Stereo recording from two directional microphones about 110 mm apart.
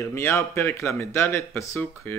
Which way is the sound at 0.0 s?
25° left (ahead or behind).